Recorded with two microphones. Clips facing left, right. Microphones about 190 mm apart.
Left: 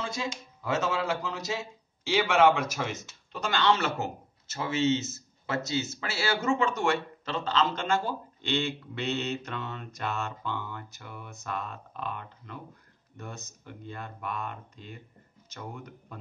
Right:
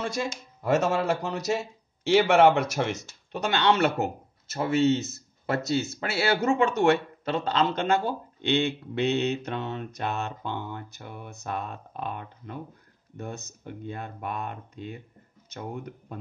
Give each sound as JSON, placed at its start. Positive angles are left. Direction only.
{"t": 0.0, "sound": "speech", "side_deg": -65}